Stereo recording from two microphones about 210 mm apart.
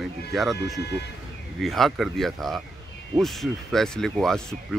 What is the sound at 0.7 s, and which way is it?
Speech, 50° left (ahead or behind).